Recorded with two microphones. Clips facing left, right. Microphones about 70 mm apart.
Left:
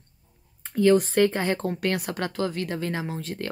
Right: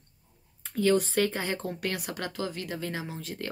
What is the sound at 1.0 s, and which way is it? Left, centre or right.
Speech, left.